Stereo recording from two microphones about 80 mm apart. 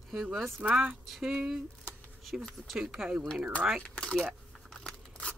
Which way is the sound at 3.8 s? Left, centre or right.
Centre.